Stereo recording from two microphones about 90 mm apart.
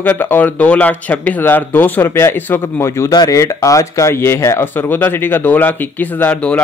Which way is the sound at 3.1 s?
40° left (ahead or behind).